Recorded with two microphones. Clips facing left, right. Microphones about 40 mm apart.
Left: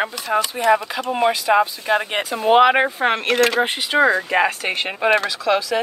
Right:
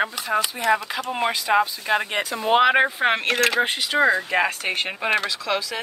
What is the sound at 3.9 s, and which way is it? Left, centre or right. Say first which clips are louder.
Speech: left 4 dB; centre.